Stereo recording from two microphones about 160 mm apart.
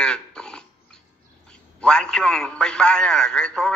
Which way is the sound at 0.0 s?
5° left (ahead or behind).